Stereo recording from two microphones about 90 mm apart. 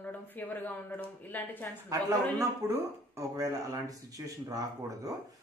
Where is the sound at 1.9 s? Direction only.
35° right (ahead or behind).